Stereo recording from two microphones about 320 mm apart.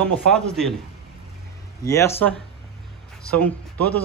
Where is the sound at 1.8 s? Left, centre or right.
Centre.